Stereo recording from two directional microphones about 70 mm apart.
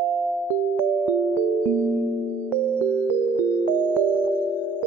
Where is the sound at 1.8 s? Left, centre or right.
Right.